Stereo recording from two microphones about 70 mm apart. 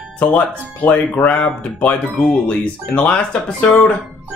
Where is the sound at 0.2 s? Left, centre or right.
Centre.